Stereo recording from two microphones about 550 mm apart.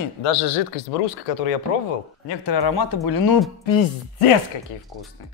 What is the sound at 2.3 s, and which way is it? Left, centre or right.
Speech, left.